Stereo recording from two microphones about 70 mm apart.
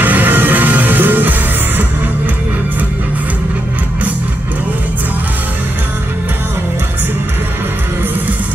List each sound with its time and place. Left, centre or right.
0.0 s music: right